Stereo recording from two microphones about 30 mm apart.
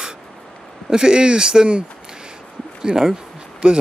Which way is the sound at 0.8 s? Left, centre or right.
Right.